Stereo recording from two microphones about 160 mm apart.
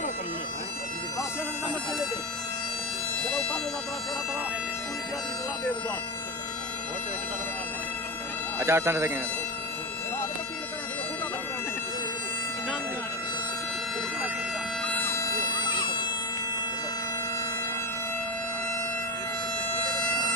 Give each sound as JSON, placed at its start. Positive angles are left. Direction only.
{"t": 8.5, "sound": "speech", "side_deg": -15}
{"t": 15.0, "sound": "bagpipes", "side_deg": 15}